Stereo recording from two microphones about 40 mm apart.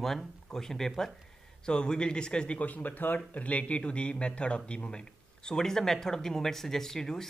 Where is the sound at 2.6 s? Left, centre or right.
Left.